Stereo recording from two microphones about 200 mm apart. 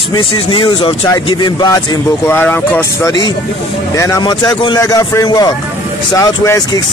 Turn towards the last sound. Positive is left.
turn(degrees=20)  # may be behind; listen again after turning